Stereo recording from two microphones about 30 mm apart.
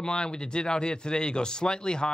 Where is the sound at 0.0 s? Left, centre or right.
Left.